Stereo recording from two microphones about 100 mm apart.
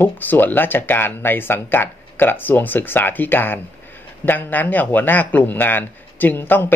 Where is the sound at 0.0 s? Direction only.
20° left (ahead or behind).